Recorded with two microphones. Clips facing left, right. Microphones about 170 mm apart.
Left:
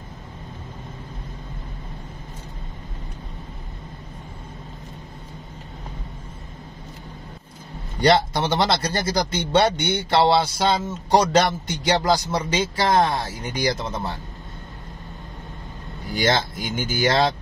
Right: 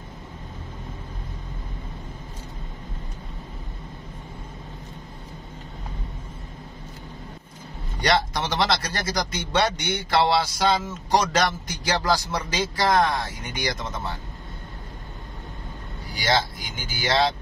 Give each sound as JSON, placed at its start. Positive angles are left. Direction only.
{"t": 8.0, "sound": "speech", "side_deg": 30}
{"t": 16.2, "sound": "speech", "side_deg": 50}